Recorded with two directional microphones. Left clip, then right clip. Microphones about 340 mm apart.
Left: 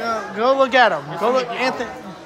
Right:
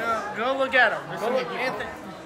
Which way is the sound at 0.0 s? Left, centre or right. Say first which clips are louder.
Left 6 dB; centre.